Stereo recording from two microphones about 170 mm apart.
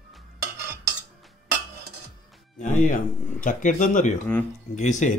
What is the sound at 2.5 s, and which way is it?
Speech, 45° left (ahead or behind).